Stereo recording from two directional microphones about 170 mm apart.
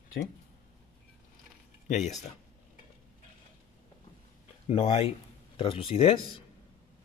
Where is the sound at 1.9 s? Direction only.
45° left (ahead or behind).